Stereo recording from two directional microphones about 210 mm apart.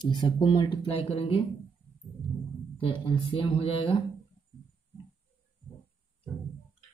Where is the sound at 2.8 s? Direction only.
25° left (ahead or behind).